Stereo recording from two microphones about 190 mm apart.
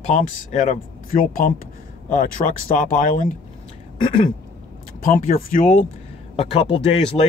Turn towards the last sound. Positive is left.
turn(degrees=30)  # may be behind; listen again after turning